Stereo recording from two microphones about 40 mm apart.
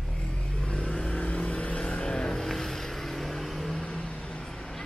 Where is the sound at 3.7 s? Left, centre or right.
Centre.